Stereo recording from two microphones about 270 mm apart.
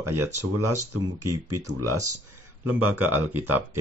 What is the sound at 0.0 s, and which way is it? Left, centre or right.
Speech, centre.